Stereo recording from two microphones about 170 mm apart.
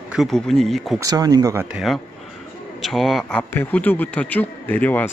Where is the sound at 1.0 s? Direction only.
20° right (ahead or behind).